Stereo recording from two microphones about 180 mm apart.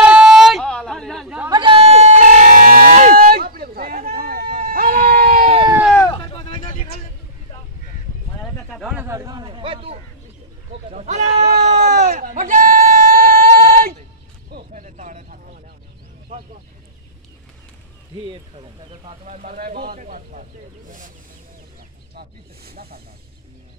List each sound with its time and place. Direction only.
0.0 s a sound: 5° right (ahead or behind)
1.5 s music: 25° right (ahead or behind); by 5.5 s 55° right (ahead or behind)
6.0 s vehicle: 25° left (ahead or behind)
8.5 s a sound: 5° left (ahead or behind)
8.9 s a sound: 15° right (ahead or behind); by 9.9 s 30° right (ahead or behind)
10.9 s sheep: 40° right (ahead or behind); by 13.9 s 55° right (ahead or behind)
14.7 s vehicle: 45° right (ahead or behind)
18.2 s bird: 25° right (ahead or behind); by 20.4 s 45° right (ahead or behind)
22.1 s snake: 60° right (ahead or behind)